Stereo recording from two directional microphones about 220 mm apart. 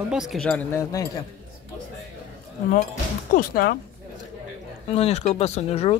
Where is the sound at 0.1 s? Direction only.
Centre (ahead or behind).